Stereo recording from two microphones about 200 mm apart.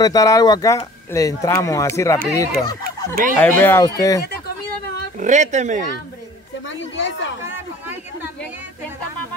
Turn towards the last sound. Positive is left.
turn(degrees=-10)  # may be behind; listen again after turning